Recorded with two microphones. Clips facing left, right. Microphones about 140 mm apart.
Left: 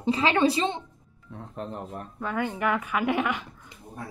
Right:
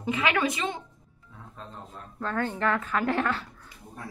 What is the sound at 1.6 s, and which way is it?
Speech, 20° left (ahead or behind).